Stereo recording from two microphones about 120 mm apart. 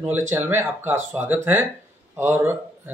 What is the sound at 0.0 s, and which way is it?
A man's voice, 15° right (ahead or behind).